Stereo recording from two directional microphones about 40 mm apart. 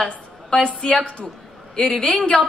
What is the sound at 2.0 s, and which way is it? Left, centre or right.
Speech, left.